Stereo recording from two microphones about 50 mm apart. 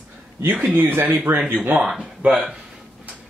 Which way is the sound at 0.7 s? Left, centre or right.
Right.